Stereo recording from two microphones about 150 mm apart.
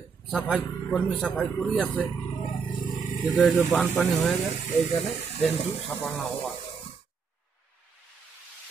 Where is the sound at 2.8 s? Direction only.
65° left (ahead or behind).